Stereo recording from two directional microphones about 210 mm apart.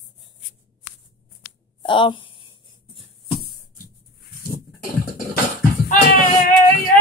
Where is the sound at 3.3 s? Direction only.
45° left (ahead or behind).